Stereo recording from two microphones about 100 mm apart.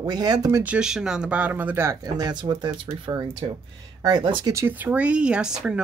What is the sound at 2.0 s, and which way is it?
Speech, 45° right (ahead or behind).